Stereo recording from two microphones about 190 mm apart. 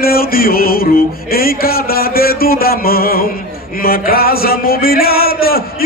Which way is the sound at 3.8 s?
50° left (ahead or behind).